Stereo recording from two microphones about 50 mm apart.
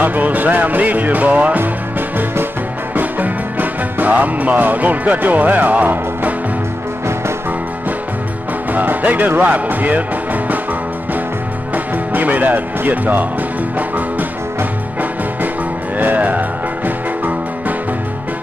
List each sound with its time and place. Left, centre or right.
0.0 s speech: right
1.6 s music: right
8.7 s speech: right
11.7 s speech: right
13.7 s music: right